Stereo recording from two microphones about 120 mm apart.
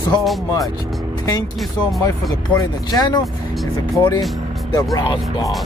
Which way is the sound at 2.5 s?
30° left (ahead or behind).